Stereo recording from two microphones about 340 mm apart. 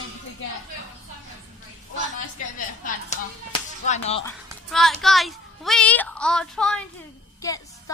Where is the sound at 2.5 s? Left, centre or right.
Left.